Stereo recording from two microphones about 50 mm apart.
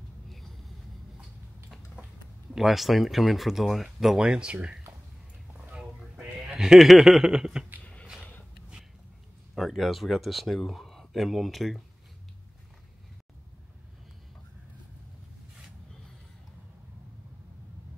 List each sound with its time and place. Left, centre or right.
0.3 s vehicle: centre
2.5 s speech: centre
4.2 s speech: centre
6.5 s speech: centre
7.8 s a sound: left
9.6 s speech: centre